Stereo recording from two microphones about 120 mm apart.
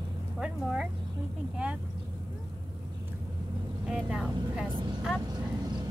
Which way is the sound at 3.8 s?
5° right (ahead or behind).